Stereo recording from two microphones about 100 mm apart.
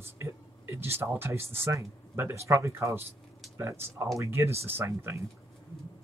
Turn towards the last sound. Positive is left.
turn(degrees=-25)  # may be behind; listen again after turning